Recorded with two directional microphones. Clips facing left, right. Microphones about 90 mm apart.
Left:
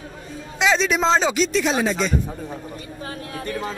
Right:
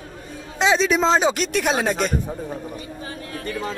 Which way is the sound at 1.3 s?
55° right (ahead or behind).